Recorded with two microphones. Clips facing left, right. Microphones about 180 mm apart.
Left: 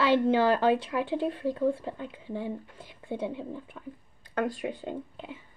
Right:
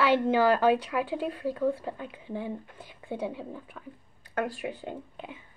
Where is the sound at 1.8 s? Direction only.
15° right (ahead or behind).